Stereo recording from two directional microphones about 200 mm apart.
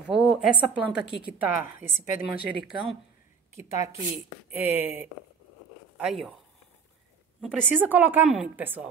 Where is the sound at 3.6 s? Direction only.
35° left (ahead or behind).